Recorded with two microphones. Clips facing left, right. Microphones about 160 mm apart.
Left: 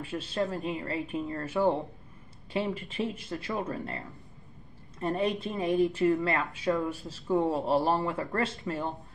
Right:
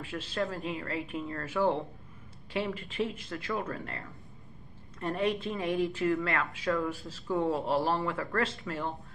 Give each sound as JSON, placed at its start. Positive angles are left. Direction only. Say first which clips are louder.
{"t": 0.1, "sound": "speech", "louder": "left 2 dB", "side_deg": 20}
{"t": 5.0, "sound": "speech", "louder": "left 1 dB", "side_deg": 20}